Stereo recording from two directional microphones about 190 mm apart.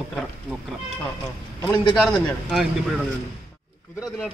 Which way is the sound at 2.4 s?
Centre (ahead or behind).